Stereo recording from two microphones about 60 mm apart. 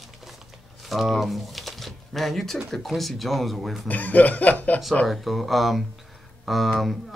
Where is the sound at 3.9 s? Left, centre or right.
Left.